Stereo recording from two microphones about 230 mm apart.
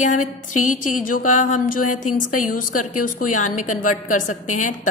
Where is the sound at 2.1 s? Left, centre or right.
Left.